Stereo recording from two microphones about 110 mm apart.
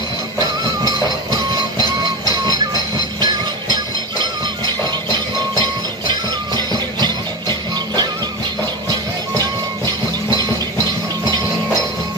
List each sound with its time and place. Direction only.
0.4 s music: 35° right (ahead or behind)
3.2 s music: 40° right (ahead or behind)